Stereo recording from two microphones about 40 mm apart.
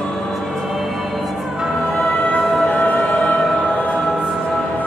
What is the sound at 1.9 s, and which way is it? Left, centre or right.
Music, left.